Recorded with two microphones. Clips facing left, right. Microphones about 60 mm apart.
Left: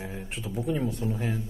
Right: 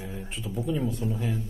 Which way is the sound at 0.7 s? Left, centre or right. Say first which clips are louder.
Even; left.